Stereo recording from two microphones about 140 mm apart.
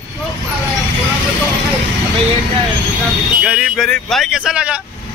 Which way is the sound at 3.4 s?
10° right (ahead or behind).